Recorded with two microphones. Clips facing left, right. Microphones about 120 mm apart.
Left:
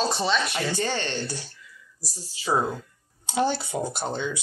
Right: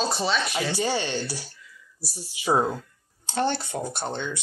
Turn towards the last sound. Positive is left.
turn(degrees=10)  # may be behind; listen again after turning